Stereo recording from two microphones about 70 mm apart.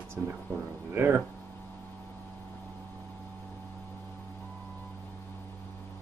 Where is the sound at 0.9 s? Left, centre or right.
Right.